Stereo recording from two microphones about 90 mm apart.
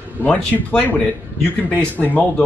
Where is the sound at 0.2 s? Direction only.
15° left (ahead or behind).